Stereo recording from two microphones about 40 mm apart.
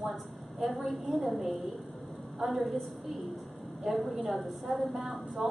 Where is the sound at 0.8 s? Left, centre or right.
Centre.